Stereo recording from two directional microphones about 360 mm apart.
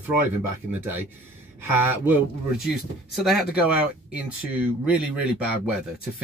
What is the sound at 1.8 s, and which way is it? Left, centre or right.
Speech, centre.